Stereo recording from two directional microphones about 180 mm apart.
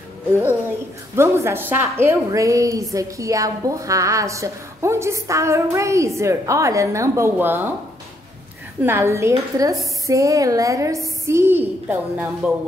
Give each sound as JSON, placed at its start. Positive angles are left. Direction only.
{"t": 0.3, "sound": "a woman's voice", "side_deg": -10}
{"t": 8.8, "sound": "a woman's voice", "side_deg": -15}